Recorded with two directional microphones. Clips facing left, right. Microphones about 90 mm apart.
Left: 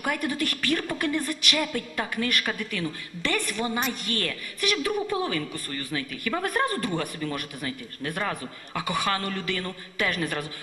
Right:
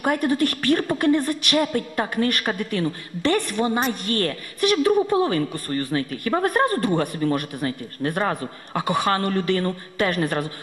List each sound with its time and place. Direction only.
0.0 s a woman's voice: 40° right (ahead or behind)